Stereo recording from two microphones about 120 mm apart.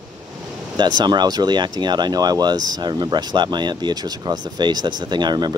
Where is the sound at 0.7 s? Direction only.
35° right (ahead or behind).